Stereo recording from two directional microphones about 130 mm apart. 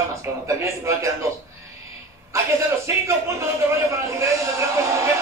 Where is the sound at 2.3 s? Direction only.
20° right (ahead or behind).